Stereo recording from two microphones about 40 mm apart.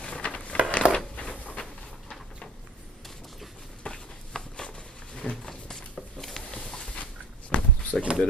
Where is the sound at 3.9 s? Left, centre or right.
Centre.